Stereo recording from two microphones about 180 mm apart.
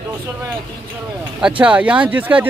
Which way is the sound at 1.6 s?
5° right (ahead or behind).